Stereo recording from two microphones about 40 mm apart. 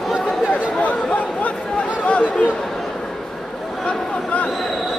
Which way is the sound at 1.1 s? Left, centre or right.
Left.